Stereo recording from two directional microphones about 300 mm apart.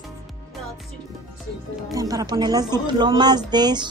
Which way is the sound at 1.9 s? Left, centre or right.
Centre.